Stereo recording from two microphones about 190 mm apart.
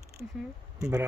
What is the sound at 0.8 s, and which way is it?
Speech, 15° right (ahead or behind).